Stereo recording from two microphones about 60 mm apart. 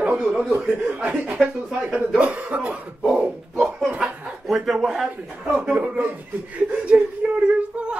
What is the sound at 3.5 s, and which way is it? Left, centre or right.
Speech, centre.